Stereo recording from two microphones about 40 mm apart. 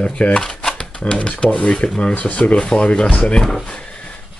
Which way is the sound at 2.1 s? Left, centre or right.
Left.